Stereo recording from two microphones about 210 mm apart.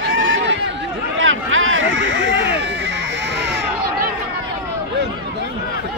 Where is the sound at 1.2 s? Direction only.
70° right (ahead or behind).